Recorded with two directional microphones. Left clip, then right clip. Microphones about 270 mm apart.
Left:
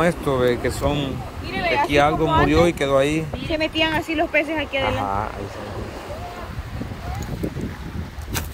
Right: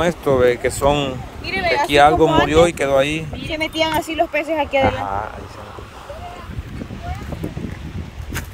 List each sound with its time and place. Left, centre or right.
0.0 s speech: centre
1.5 s a sound: right
1.9 s speech: centre
3.5 s speech: right